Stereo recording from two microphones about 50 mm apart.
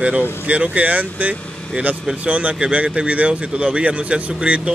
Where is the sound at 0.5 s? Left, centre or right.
Right.